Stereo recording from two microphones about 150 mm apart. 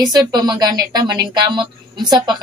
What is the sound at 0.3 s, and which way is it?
A woman's voice, 25° right (ahead or behind).